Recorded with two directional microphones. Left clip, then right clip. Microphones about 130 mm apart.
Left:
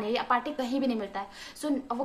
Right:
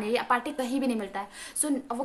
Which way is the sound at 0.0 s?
25° right (ahead or behind).